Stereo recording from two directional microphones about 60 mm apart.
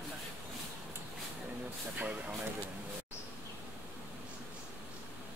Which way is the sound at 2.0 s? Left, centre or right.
Right.